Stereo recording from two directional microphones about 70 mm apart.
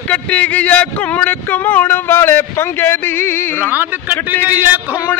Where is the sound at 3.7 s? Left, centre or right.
Right.